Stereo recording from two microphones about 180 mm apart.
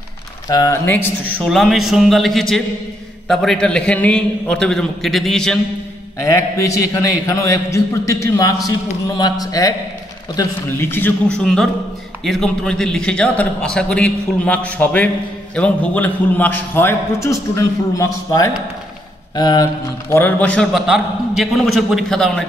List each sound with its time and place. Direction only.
0.5 s a man's voice: 20° left (ahead or behind); by 5.6 s centre (ahead or behind)
6.2 s a man's voice: 15° left (ahead or behind)